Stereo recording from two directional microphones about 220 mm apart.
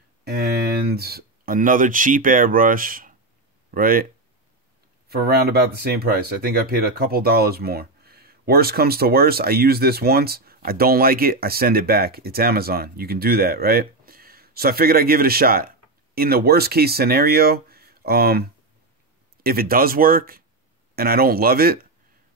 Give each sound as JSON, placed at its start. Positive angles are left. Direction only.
{"t": 0.2, "sound": "speech", "side_deg": -45}